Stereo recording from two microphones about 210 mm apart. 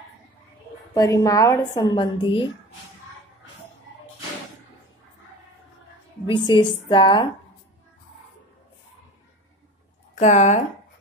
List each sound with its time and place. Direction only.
0.9 s a woman's voice: 15° left (ahead or behind)
6.2 s a woman's voice: 20° left (ahead or behind)
10.1 s speech: 30° left (ahead or behind)